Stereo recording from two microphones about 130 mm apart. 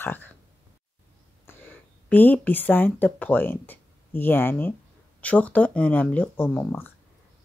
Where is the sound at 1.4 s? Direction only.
15° left (ahead or behind).